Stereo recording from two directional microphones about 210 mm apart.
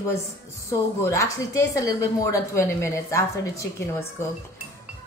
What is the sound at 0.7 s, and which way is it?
Speech, 15° left (ahead or behind).